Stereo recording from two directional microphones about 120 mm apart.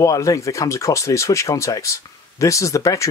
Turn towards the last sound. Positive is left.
turn(degrees=25)  # may be behind; listen again after turning